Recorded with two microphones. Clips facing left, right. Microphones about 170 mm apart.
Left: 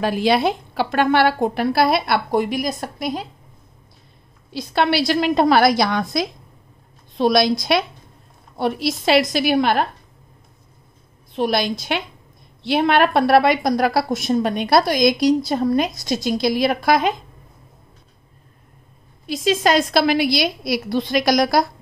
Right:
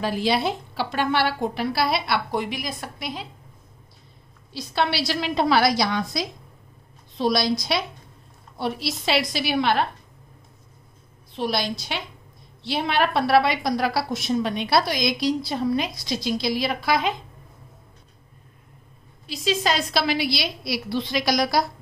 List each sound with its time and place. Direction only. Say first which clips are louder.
0.0 s a woman's voice: left 5 dB; 55° left (ahead or behind); by 3.3 s 40° left (ahead or behind)
4.5 s a woman's voice: left 5 dB; 55° left (ahead or behind)
11.3 s a woman's voice: left 5 dB; 50° left (ahead or behind)
19.2 s a woman's voice: left 6 dB; 50° left (ahead or behind)